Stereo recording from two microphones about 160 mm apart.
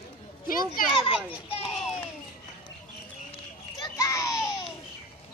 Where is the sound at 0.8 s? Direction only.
60° left (ahead or behind).